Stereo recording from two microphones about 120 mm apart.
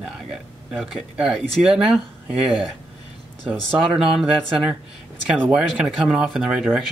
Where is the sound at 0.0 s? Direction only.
5° right (ahead or behind).